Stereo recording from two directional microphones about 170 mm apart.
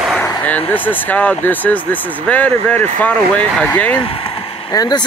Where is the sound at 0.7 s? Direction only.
10° left (ahead or behind).